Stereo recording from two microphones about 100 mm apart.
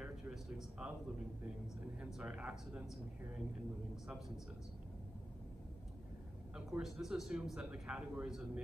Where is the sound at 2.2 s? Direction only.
15° right (ahead or behind).